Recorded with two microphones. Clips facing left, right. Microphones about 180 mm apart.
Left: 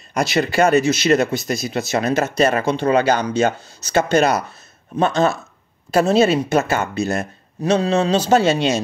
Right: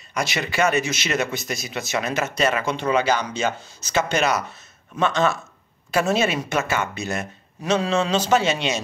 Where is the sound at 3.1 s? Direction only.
55° left (ahead or behind).